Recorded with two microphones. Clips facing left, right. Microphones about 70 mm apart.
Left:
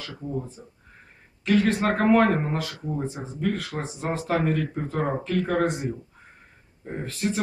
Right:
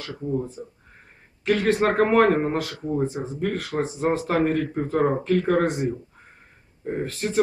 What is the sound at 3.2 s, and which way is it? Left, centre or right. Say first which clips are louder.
Speech: right 6 dB; centre.